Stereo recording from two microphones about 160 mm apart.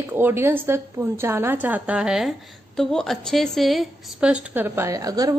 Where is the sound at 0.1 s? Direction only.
15° right (ahead or behind).